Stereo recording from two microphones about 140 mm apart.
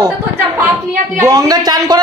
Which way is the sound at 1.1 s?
25° right (ahead or behind).